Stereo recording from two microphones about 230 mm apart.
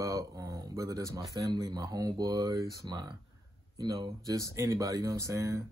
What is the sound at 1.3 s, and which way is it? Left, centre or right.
Speech, centre.